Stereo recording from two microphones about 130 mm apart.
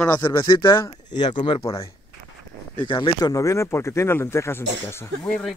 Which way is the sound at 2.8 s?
40° left (ahead or behind).